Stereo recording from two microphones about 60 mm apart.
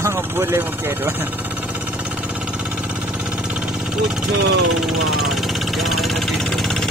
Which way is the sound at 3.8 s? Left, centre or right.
Centre.